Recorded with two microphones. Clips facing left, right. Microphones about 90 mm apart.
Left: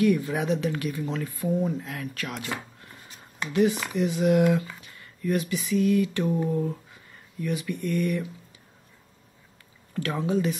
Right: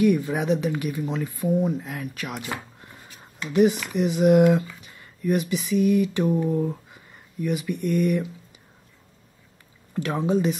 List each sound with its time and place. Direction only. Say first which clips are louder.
0.0 s speech: right 2 dB; 15° right (ahead or behind)
4.0 s speech: right 4 dB; 20° right (ahead or behind)
9.9 s speech: right 3 dB; 20° right (ahead or behind)